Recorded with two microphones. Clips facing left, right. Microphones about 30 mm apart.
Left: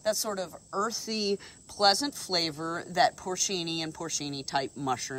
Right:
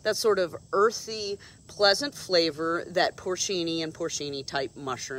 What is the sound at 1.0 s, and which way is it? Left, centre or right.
Speech, centre.